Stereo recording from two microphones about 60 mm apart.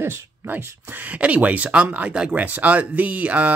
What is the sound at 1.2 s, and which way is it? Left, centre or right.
Speech, right.